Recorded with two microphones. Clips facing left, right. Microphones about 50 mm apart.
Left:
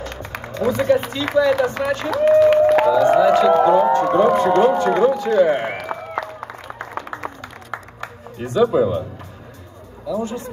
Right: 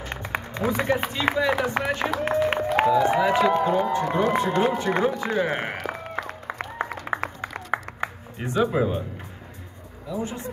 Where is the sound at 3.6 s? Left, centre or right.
Left.